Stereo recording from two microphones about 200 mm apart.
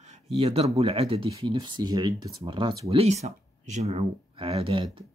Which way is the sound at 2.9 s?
30° right (ahead or behind).